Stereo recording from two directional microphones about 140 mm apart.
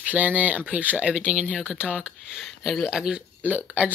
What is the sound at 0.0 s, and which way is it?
Speech, 10° right (ahead or behind).